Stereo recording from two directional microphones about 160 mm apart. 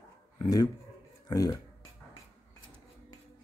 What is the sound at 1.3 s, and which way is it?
Speech, 25° left (ahead or behind).